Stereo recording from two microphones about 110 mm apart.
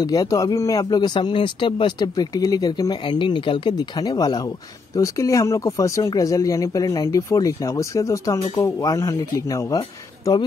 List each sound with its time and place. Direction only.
0.0 s speech: 35° left (ahead or behind)
3.1 s speech: 45° left (ahead or behind)